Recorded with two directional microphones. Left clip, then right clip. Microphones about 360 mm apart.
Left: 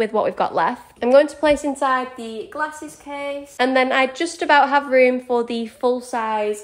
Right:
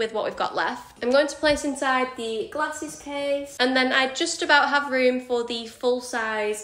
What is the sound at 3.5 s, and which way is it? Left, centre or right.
A woman's voice, centre.